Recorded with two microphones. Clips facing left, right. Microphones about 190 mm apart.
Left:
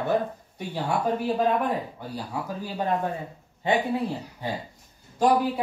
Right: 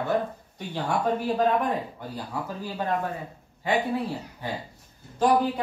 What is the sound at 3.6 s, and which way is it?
Speech, 25° left (ahead or behind).